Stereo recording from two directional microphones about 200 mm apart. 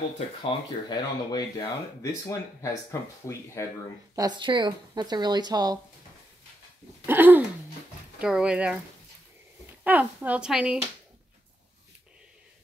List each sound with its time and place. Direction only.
0.4 s speech: 25° left (ahead or behind)
4.1 s speech: 20° right (ahead or behind)
7.1 s speech: 10° right (ahead or behind)
9.8 s speech: 10° right (ahead or behind)